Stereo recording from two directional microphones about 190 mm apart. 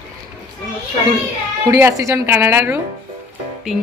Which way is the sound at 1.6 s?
15° right (ahead or behind).